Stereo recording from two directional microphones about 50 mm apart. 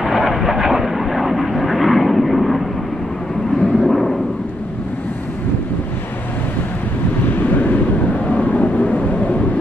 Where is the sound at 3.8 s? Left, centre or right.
Centre.